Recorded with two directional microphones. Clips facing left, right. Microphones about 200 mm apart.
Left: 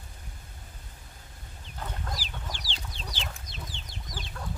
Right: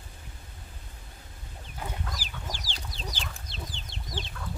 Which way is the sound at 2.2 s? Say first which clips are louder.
Left 1 dB; 45° right (ahead or behind).